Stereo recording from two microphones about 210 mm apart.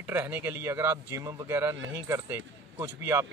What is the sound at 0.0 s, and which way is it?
Speech, 10° right (ahead or behind).